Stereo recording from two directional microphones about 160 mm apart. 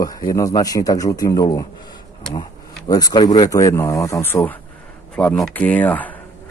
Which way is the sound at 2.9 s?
25° left (ahead or behind).